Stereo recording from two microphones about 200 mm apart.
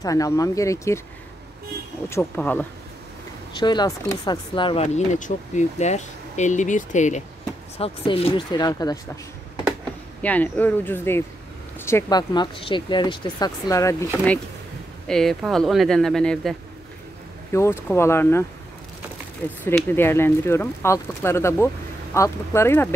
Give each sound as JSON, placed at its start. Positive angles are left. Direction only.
{"t": 0.0, "sound": "speech", "side_deg": 15}
{"t": 2.0, "sound": "speech", "side_deg": 10}
{"t": 3.5, "sound": "speech", "side_deg": 20}
{"t": 10.2, "sound": "speech", "side_deg": 10}
{"t": 17.5, "sound": "speech", "side_deg": 15}
{"t": 19.6, "sound": "speech", "side_deg": 10}